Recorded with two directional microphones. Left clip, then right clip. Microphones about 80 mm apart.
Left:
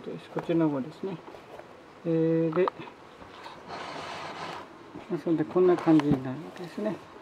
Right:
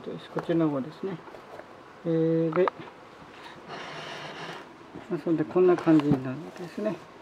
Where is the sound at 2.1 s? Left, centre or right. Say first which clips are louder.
Even; centre.